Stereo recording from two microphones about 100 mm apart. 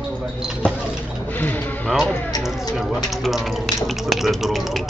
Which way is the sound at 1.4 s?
15° left (ahead or behind).